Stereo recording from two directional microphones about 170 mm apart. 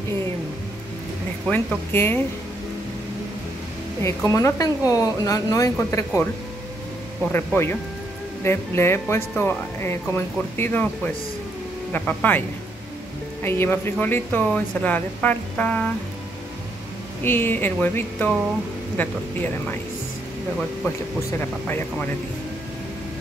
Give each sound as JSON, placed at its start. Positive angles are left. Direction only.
{"t": 1.5, "sound": "speech", "side_deg": 10}
{"t": 4.0, "sound": "speech", "side_deg": 15}
{"t": 7.3, "sound": "speech", "side_deg": 15}
{"t": 11.9, "sound": "speech", "side_deg": 10}
{"t": 17.2, "sound": "speech", "side_deg": 15}